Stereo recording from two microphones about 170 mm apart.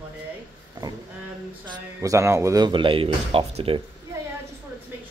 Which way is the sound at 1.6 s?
20° right (ahead or behind).